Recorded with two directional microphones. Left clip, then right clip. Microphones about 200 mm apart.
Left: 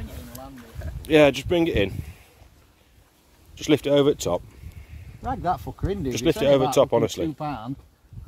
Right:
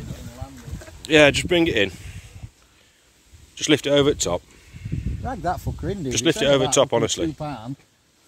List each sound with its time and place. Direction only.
1.0 s speech: 5° left (ahead or behind)
1.3 s speech: 5° right (ahead or behind)
3.5 s speech: centre (ahead or behind)
5.2 s speech: 35° right (ahead or behind)
6.0 s speech: centre (ahead or behind)
7.3 s speech: 35° right (ahead or behind)